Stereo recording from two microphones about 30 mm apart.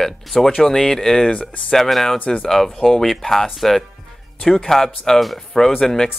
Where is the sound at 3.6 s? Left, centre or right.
Centre.